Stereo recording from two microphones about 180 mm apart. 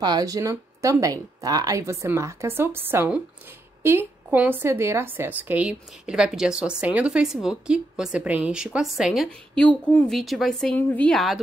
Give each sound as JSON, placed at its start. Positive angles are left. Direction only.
{"t": 0.0, "sound": "a woman's voice", "side_deg": -20}